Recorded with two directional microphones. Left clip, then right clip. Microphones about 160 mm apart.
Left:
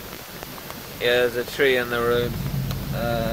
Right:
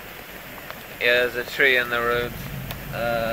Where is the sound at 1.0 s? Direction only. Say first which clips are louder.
Even; 15° left (ahead or behind).